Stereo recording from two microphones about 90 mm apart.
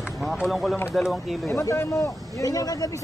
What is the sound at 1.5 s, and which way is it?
Speech, 35° left (ahead or behind).